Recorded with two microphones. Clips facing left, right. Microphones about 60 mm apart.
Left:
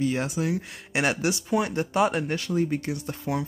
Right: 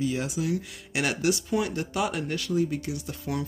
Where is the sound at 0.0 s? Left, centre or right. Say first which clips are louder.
Left 2 dB; left.